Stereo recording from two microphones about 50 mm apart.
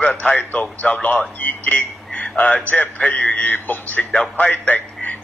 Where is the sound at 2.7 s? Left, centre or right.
Left.